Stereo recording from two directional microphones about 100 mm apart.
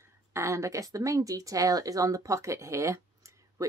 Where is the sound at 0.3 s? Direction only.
30° right (ahead or behind).